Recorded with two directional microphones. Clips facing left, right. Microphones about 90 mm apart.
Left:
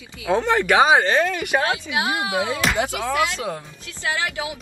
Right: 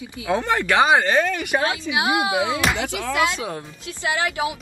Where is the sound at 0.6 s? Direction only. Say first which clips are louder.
Left 1 dB; 5° left (ahead or behind).